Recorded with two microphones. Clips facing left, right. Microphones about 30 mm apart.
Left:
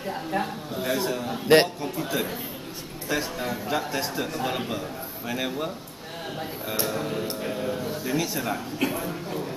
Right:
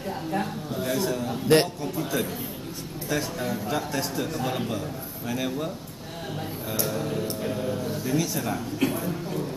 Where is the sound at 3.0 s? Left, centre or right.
Centre.